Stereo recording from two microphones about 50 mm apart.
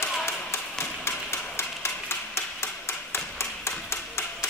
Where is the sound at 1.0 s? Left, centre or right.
Left.